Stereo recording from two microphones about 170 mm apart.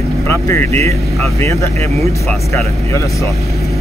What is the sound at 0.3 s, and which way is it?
Speech, 15° left (ahead or behind).